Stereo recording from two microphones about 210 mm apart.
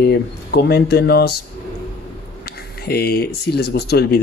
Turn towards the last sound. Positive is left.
turn(degrees=50)  # may be behind; listen again after turning